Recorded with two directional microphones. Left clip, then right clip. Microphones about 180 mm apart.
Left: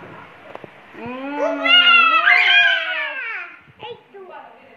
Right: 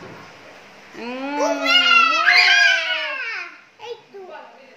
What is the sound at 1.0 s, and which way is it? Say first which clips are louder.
Speech: right 1 dB; 15° right (ahead or behind).